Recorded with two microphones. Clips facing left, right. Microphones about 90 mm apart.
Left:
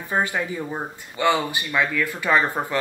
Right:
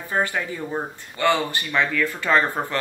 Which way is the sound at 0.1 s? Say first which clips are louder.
Left 1 dB; 15° left (ahead or behind).